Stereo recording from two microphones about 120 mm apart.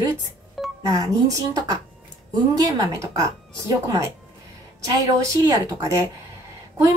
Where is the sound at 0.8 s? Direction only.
30° right (ahead or behind).